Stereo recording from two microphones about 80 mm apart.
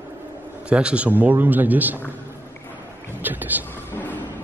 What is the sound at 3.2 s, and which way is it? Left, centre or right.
Speech, right.